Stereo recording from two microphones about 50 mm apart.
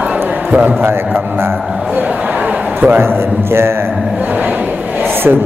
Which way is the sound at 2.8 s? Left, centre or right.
Right.